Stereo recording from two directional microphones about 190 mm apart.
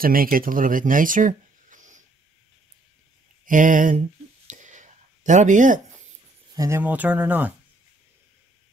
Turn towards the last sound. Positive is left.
turn(degrees=-5)  # may be behind; listen again after turning